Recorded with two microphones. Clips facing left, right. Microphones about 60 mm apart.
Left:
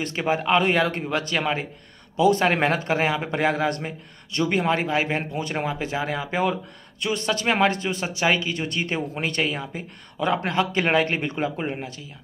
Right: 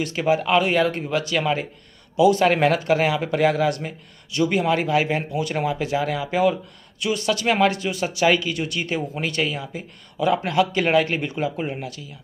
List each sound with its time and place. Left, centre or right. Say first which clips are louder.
0.0 s a man's voice: right 3 dB; left